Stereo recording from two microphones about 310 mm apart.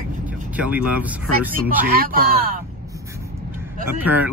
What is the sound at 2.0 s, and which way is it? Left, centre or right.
Speech, right.